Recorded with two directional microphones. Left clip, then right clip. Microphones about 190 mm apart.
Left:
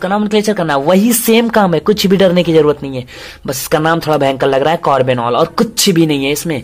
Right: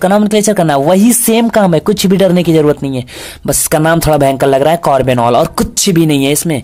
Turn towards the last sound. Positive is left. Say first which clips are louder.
# right 1 dB
turn(degrees=-25)  # may be behind; listen again after turning